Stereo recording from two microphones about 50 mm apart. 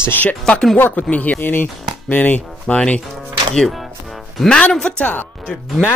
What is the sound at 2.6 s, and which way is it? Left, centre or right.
Speech, left.